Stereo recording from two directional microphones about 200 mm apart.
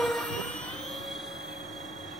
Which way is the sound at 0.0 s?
Centre (ahead or behind).